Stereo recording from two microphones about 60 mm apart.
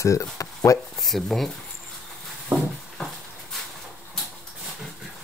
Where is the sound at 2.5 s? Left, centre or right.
Right.